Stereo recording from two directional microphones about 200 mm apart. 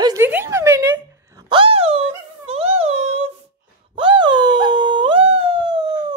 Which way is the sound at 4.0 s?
25° right (ahead or behind).